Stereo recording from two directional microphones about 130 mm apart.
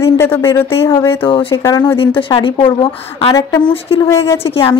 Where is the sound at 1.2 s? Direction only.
40° left (ahead or behind).